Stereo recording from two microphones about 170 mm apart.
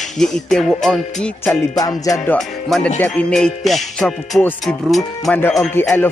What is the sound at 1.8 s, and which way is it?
Music, 20° left (ahead or behind).